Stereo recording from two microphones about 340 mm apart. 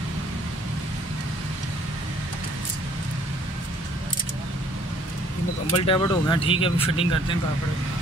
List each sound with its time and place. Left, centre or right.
5.8 s speech: centre